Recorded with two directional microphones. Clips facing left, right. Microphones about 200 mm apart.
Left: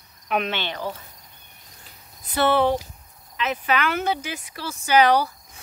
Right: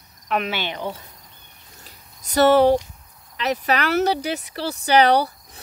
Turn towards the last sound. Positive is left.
turn(degrees=-35)  # may be behind; listen again after turning